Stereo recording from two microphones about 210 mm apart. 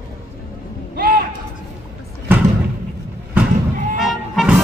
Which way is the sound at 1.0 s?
40° right (ahead or behind).